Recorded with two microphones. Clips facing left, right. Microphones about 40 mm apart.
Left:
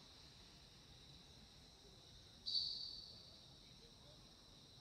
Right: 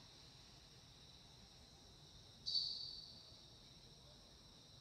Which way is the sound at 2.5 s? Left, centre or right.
Left.